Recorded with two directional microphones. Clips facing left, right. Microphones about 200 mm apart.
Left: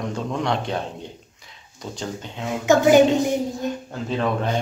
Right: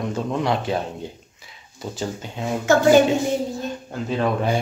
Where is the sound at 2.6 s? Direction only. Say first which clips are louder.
Even; 15° left (ahead or behind).